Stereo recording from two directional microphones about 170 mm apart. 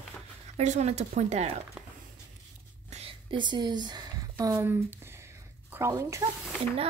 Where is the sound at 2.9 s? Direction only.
30° right (ahead or behind).